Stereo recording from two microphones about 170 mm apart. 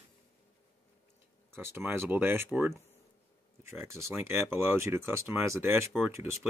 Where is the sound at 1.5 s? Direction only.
15° right (ahead or behind).